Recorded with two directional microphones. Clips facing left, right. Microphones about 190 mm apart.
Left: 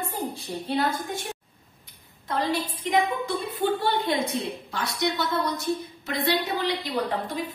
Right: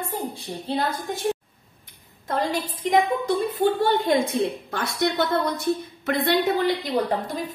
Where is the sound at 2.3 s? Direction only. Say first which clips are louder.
Right 1 dB; 45° right (ahead or behind).